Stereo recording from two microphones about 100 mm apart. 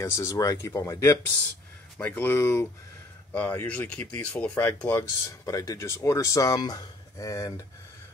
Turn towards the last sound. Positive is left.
turn(degrees=35)  # may be behind; listen again after turning